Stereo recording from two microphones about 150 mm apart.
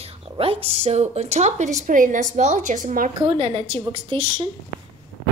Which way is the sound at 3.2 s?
40° right (ahead or behind).